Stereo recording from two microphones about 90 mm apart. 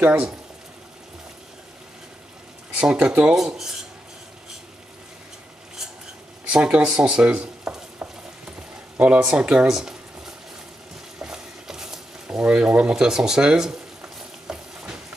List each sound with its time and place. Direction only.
0.0 s speech: 15° right (ahead or behind)
2.7 s speech: 10° right (ahead or behind)
6.4 s speech: 10° right (ahead or behind)
8.5 s frying: 15° right (ahead or behind)